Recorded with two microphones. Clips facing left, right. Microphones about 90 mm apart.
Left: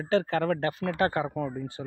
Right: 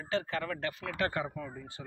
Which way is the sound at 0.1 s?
45° left (ahead or behind).